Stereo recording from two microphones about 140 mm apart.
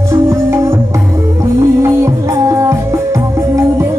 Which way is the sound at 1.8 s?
20° right (ahead or behind).